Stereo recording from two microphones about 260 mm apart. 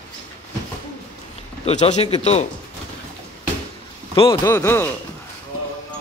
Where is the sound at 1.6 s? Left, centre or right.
Left.